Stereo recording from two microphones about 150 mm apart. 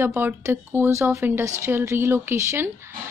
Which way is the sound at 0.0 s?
15° right (ahead or behind).